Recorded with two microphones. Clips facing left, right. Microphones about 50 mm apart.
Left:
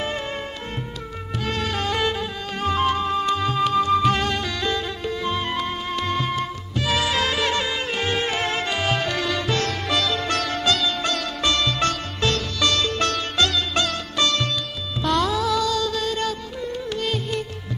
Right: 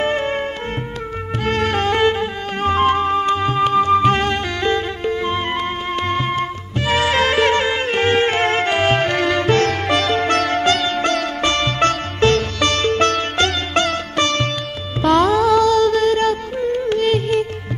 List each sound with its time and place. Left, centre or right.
0.0 s music: right
1.4 s music: right